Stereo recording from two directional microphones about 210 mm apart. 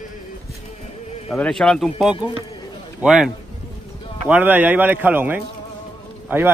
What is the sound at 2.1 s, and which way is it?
Speech, 20° left (ahead or behind).